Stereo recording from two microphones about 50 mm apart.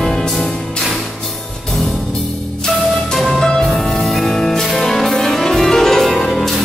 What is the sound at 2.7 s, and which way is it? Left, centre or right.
Music, centre.